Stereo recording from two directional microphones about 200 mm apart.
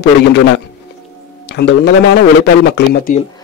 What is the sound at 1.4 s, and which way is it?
Speech, 60° left (ahead or behind).